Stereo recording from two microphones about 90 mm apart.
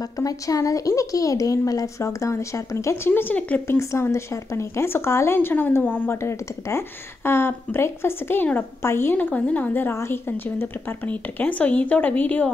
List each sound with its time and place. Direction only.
0.0 s speech: 40° left (ahead or behind)
3.1 s speech: 20° left (ahead or behind)
3.6 s speech: 25° left (ahead or behind)